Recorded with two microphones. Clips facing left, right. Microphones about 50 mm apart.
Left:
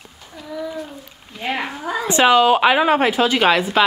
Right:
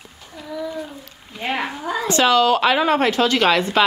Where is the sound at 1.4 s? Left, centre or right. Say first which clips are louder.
Even; centre.